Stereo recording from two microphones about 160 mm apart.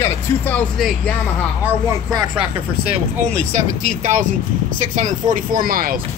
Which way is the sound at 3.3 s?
45° right (ahead or behind).